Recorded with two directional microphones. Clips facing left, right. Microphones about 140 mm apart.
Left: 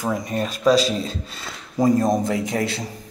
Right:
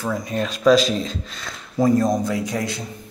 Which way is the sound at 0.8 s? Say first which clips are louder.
Right 1 dB; 35° left (ahead or behind).